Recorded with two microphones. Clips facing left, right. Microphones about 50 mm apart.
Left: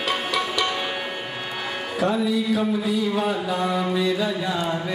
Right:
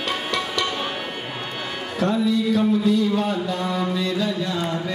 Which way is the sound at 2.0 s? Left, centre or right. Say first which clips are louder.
Right 1 dB; centre.